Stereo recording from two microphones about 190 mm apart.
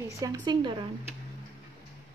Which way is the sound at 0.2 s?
20° right (ahead or behind).